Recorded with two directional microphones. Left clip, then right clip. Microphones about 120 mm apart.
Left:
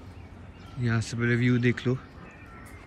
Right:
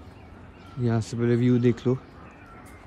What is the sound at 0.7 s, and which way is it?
Speech, 25° right (ahead or behind).